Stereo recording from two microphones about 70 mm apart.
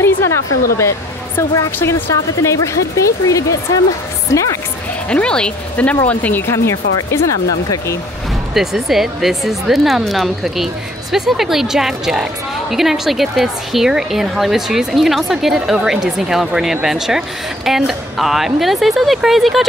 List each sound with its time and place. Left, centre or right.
0.0 s speech: left
5.1 s speech: centre
6.5 s speech: left
8.5 s speech: centre